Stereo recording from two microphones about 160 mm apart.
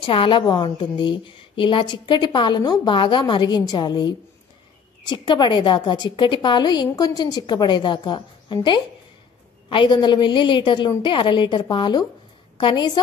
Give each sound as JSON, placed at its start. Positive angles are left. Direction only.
{"t": 0.0, "sound": "a woman's voice", "side_deg": 30}